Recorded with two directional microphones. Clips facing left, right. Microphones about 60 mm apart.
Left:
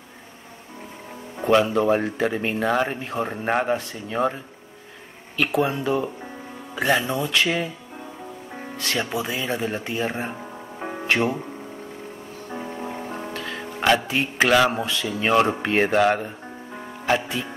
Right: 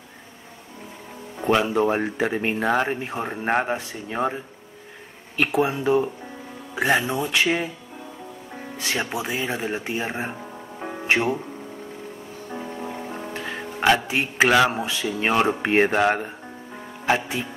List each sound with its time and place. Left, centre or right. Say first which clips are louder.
1.6 s speech: left 1 dB; centre
5.4 s speech: right 1 dB; centre
8.7 s speech: left 1 dB; centre
13.3 s music: even; centre
13.6 s speech: right 1 dB; centre